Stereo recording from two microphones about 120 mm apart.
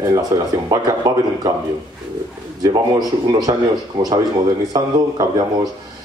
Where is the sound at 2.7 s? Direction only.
35° right (ahead or behind).